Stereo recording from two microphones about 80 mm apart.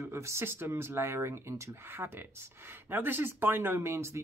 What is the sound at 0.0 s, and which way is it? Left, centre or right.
Speech, right.